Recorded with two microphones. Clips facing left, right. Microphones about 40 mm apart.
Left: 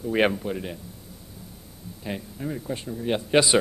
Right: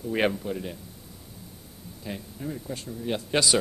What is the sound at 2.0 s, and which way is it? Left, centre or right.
A man's voice, left.